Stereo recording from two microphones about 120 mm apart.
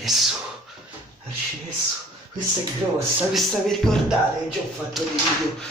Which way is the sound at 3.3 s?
5° left (ahead or behind).